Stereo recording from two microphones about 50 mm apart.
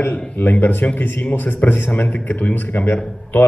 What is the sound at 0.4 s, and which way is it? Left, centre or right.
A man's voice, left.